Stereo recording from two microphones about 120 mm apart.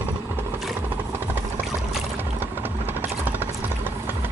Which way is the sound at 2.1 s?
15° right (ahead or behind).